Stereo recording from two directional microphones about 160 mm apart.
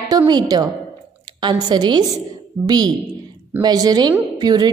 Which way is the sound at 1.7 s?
25° right (ahead or behind).